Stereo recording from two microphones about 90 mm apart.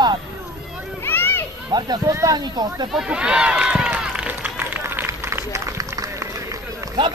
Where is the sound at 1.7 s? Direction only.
50° right (ahead or behind).